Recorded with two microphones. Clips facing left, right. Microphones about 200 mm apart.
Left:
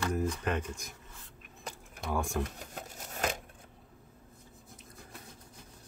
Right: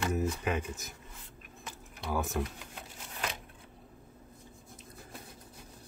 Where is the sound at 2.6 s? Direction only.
45° left (ahead or behind).